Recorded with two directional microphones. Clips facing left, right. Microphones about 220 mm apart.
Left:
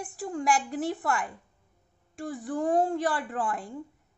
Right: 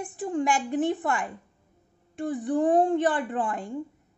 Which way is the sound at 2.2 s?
Centre (ahead or behind).